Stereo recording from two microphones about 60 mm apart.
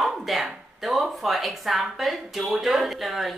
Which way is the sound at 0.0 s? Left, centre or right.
Centre.